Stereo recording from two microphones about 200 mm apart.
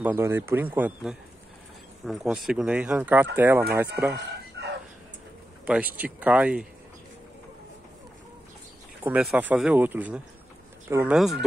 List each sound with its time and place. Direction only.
0.0 s speech: 10° right (ahead or behind)
4.1 s chicken: 55° right (ahead or behind)
5.7 s speech: 5° right (ahead or behind)
9.0 s speech: 5° right (ahead or behind)